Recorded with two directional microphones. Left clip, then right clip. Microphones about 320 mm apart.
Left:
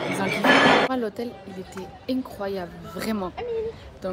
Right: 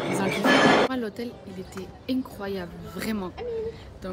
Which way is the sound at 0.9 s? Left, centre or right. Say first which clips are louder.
Left 4 dB; centre.